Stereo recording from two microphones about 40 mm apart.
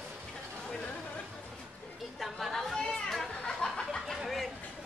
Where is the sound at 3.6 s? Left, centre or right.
Centre.